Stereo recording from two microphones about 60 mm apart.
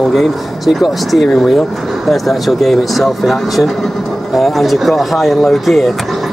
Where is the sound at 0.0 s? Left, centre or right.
Centre.